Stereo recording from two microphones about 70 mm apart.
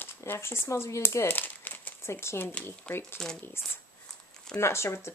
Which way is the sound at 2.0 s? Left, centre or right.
Left.